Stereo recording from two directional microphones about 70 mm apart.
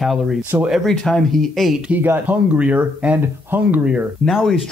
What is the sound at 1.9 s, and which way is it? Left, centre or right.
Speech, right.